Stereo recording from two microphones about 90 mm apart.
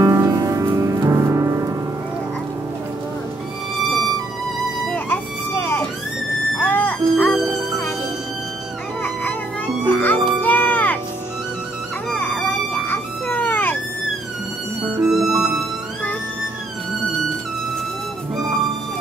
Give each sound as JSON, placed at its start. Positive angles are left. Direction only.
{"t": 0.0, "sound": "music", "side_deg": -40}
{"t": 4.8, "sound": "music", "side_deg": 15}
{"t": 9.8, "sound": "music", "side_deg": 20}
{"t": 12.1, "sound": "a sound", "side_deg": 15}
{"t": 15.0, "sound": "music", "side_deg": -5}